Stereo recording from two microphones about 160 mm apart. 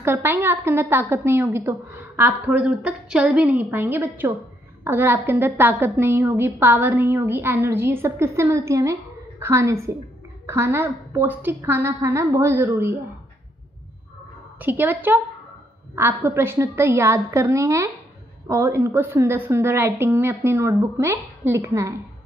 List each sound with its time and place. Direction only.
0.0 s a woman's voice: 15° right (ahead or behind)
14.6 s a woman's voice: 10° right (ahead or behind)